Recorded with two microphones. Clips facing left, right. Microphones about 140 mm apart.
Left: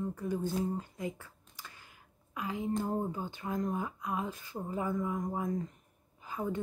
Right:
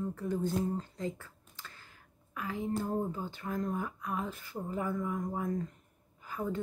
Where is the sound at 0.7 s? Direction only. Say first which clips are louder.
Right 1 dB; 10° left (ahead or behind).